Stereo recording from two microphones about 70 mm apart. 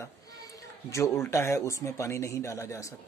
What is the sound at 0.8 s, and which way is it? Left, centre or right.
A man's voice, left.